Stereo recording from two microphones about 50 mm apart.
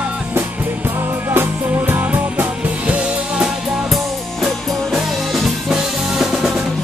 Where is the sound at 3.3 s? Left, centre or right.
Centre.